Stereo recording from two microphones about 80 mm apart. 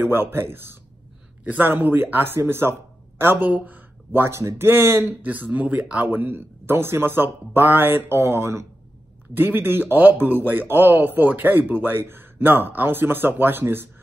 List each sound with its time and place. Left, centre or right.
0.0 s speech: right